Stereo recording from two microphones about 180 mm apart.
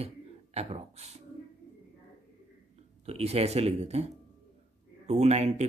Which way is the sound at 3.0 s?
35° right (ahead or behind).